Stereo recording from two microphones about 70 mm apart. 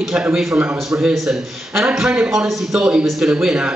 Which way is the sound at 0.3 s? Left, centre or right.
Centre.